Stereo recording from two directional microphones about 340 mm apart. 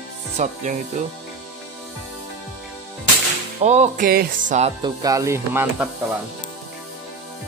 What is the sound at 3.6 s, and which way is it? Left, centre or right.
Speech, centre.